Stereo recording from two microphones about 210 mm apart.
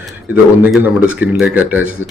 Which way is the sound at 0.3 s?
5° right (ahead or behind).